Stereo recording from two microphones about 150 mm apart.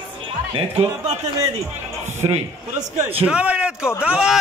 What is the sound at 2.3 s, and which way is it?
Speech, 45° right (ahead or behind).